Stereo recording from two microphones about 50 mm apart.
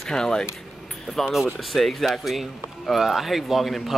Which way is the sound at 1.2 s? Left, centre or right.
Centre.